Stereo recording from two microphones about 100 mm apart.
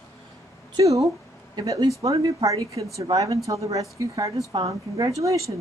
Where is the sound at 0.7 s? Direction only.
35° right (ahead or behind).